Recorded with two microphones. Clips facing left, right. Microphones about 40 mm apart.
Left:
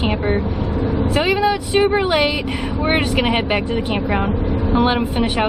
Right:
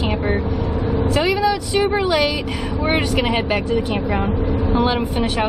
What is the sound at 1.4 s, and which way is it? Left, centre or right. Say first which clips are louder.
Speech: left 2 dB; left.